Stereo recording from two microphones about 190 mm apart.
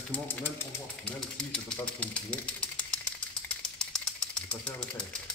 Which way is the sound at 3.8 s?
5° left (ahead or behind).